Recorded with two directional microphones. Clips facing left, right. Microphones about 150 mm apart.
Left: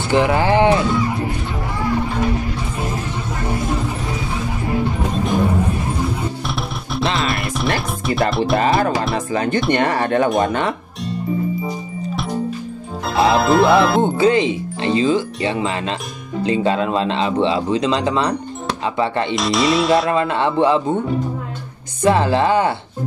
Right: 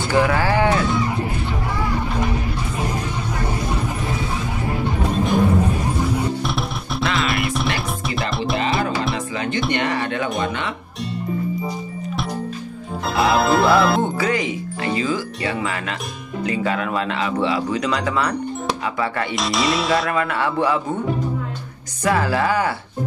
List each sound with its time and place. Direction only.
0.1 s speech: 20° left (ahead or behind)
6.4 s music: centre (ahead or behind)
7.0 s music: 30° left (ahead or behind)
7.2 s music: centre (ahead or behind)
9.3 s music: 40° left (ahead or behind)
9.7 s speech: 45° left (ahead or behind)
13.0 s speech: centre (ahead or behind)
14.0 s speech: 25° left (ahead or behind)
19.3 s speech: centre (ahead or behind)
20.1 s speech: 25° left (ahead or behind)
22.0 s speech: 25° left (ahead or behind)